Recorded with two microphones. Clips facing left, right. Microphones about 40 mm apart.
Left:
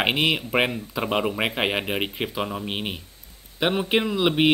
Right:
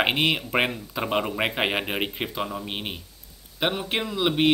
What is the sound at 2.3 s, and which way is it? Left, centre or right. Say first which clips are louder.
Speech: left 3 dB; centre.